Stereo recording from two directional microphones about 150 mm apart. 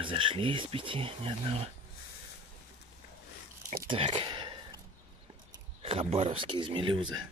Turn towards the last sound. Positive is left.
turn(degrees=-35)  # may be behind; listen again after turning